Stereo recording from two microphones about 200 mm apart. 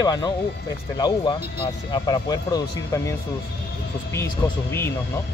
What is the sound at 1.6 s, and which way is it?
Speech, 20° left (ahead or behind).